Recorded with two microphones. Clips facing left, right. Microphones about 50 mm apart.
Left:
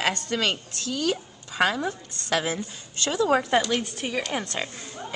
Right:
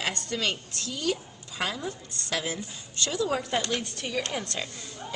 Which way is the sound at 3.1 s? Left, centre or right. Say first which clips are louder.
Left 7 dB; left.